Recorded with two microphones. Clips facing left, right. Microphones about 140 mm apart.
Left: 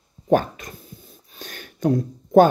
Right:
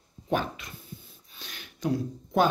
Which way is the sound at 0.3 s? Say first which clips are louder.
Left 9 dB; 45° left (ahead or behind).